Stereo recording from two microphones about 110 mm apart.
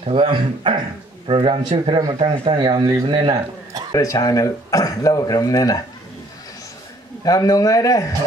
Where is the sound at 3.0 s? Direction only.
50° right (ahead or behind).